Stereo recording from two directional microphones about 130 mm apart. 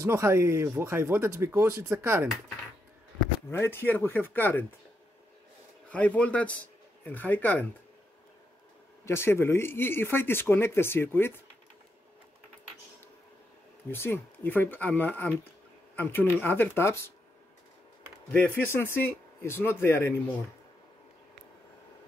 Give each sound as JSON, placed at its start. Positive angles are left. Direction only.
{"t": 0.0, "sound": "speech", "side_deg": -20}
{"t": 3.5, "sound": "speech", "side_deg": 15}
{"t": 5.9, "sound": "speech", "side_deg": 10}
{"t": 9.0, "sound": "speech", "side_deg": 20}
{"t": 13.8, "sound": "speech", "side_deg": 20}
{"t": 18.3, "sound": "speech", "side_deg": 15}